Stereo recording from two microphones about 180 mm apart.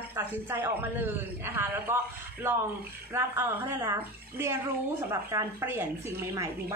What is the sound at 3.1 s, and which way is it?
A man's voice, 10° right (ahead or behind).